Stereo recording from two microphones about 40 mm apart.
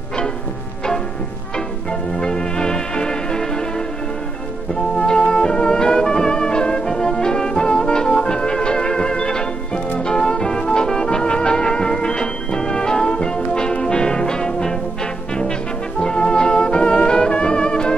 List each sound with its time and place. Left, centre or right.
1.9 s music: left
4.9 s music: left
16.0 s music: left